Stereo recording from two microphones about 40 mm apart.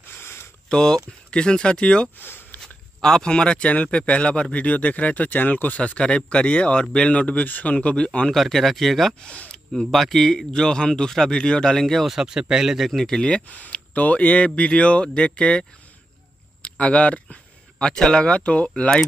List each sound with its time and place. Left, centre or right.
0.0 s a sound: left
0.7 s speech: centre
2.1 s speech: left
2.6 s a sound: centre
3.6 s speech: left
5.8 s speech: left
8.3 s speech: centre
12.1 s speech: centre
12.9 s speech: centre
13.5 s speech: left
16.6 s a sound: left
18.1 s speech: left